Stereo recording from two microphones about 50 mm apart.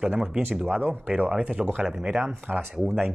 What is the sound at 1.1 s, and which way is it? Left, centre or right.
Speech, right.